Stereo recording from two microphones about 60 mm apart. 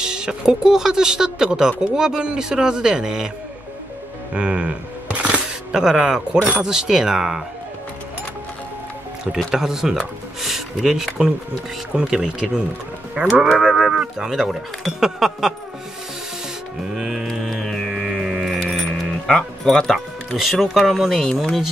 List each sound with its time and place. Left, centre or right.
0.0 s speech: centre
4.3 s coin: centre
5.7 s speech: centre
9.5 s speech: centre
16.9 s speech: centre
17.3 s music: centre
18.6 s speech: centre